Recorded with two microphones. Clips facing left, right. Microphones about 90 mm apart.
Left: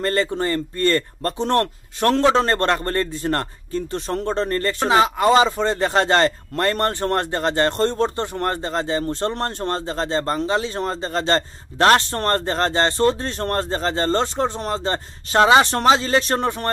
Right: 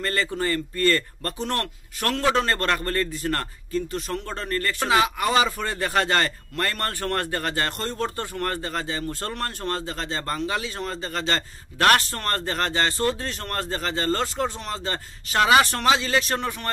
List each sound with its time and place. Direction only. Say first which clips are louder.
0.0 s a man's voice: left 5 dB; 30° left (ahead or behind)